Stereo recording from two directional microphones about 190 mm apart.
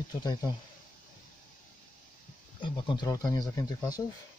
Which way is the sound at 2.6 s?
25° left (ahead or behind).